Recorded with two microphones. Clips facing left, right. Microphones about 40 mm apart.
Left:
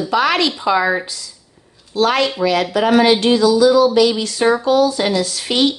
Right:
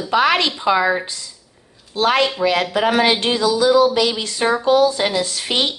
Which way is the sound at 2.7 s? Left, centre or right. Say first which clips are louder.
Left 3 dB; right.